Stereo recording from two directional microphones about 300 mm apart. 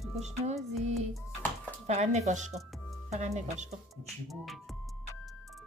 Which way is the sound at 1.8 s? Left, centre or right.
Right.